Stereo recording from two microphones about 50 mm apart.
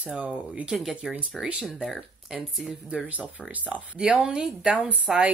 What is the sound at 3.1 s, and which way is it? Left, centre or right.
Speech, right.